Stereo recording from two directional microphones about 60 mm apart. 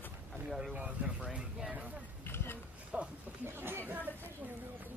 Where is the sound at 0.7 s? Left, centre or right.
Centre.